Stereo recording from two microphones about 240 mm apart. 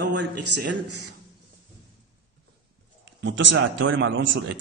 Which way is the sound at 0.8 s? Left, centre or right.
Right.